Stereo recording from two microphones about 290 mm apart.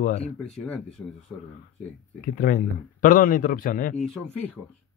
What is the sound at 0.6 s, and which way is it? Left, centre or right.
Speech, centre.